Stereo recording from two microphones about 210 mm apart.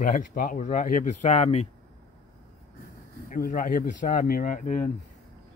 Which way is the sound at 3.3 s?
40° left (ahead or behind).